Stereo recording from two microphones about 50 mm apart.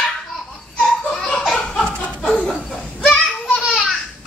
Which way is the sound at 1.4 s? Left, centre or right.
Centre.